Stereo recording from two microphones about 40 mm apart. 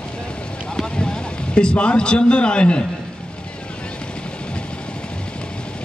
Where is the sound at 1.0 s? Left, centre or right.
Left.